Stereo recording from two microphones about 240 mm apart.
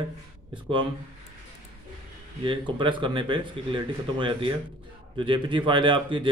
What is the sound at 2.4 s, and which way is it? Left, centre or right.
A man's voice, right.